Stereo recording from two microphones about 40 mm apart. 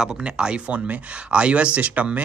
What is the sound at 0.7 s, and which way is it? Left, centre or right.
Speech, right.